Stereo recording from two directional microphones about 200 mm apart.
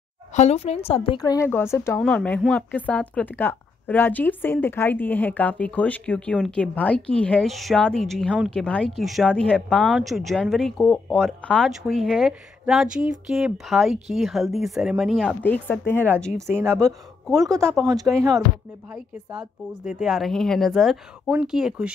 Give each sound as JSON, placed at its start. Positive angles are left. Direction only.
{"t": 0.3, "sound": "a woman's voice", "side_deg": 35}
{"t": 16.3, "sound": "speech", "side_deg": -15}
{"t": 18.9, "sound": "a woman's voice", "side_deg": -5}